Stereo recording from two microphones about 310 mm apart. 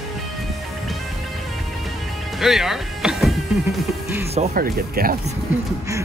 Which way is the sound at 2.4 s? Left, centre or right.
Centre.